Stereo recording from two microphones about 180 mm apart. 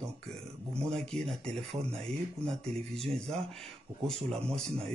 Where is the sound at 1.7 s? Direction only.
30° right (ahead or behind).